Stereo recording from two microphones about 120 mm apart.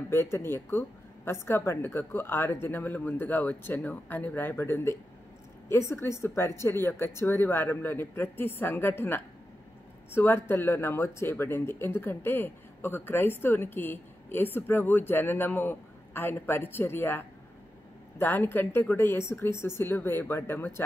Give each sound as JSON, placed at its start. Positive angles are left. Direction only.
{"t": 0.1, "sound": "a woman's voice", "side_deg": 20}